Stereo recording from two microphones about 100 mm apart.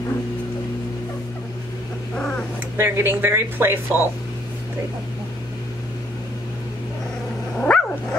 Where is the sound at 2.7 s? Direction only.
25° right (ahead or behind).